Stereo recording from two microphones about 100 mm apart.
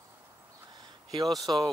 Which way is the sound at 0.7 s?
45° right (ahead or behind).